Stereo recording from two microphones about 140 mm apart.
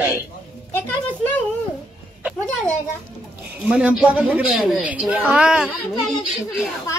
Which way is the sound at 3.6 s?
5° right (ahead or behind).